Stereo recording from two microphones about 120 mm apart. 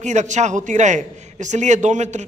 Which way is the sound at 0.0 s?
80° right.